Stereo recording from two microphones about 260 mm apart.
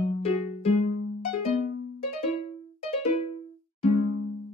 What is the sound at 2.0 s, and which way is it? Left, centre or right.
Music, left.